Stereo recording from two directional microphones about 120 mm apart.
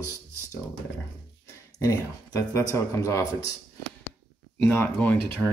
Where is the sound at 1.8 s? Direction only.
30° left (ahead or behind).